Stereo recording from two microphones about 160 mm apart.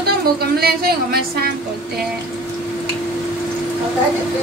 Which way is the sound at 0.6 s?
75° right (ahead or behind).